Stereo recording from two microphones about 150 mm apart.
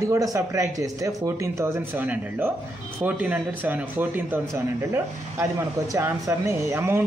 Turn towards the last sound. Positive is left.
turn(degrees=-15)  # may be behind; listen again after turning